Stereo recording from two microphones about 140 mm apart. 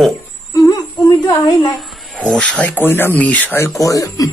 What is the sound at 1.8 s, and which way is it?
Speech, 5° left (ahead or behind).